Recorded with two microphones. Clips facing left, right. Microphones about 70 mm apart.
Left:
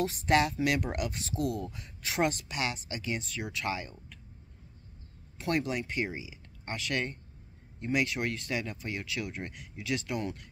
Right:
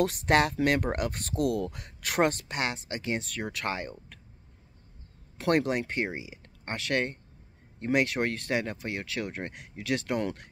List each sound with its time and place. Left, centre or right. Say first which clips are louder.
0.0 s speech: right 3 dB; right
5.4 s speech: right 5 dB; right